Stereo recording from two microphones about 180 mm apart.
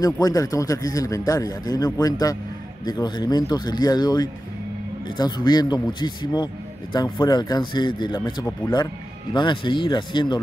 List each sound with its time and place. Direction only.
0.0 s a man's voice: 20° left (ahead or behind)